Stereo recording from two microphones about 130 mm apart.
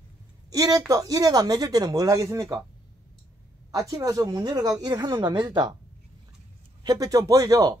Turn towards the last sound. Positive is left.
turn(degrees=-25)  # may be behind; listen again after turning